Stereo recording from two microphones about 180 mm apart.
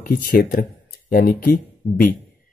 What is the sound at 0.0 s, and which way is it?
Speech, 55° left (ahead or behind).